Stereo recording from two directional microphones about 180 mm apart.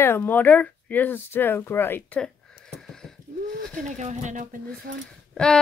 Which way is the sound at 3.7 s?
40° right (ahead or behind).